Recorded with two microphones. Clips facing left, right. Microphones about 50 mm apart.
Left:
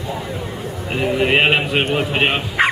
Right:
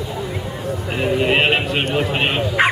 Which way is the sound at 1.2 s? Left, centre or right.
Centre.